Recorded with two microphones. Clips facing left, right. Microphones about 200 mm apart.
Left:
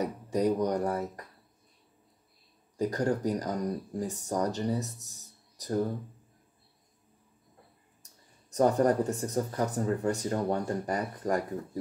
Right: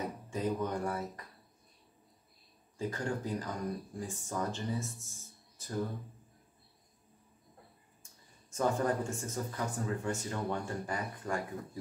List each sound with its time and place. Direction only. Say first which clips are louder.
0.0 s speech: left 8 dB; 40° left (ahead or behind)
2.8 s speech: left 8 dB; 40° left (ahead or behind)
8.0 s speech: left 2 dB; 40° left (ahead or behind)